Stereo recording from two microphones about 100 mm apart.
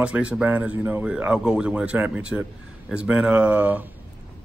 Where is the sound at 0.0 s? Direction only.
10° right (ahead or behind).